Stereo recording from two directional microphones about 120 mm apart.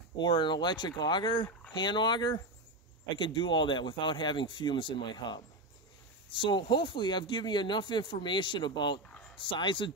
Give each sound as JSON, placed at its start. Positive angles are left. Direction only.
{"t": 0.2, "sound": "speech", "side_deg": 40}